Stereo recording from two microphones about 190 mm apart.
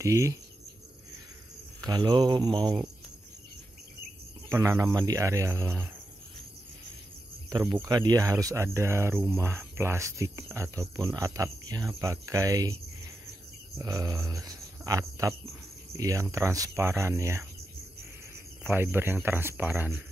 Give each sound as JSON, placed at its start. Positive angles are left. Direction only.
{"t": 0.0, "sound": "speech", "side_deg": -15}
{"t": 1.9, "sound": "a sound", "side_deg": -20}
{"t": 4.5, "sound": "speech", "side_deg": -15}
{"t": 7.7, "sound": "speech", "side_deg": -20}
{"t": 13.7, "sound": "speech", "side_deg": -15}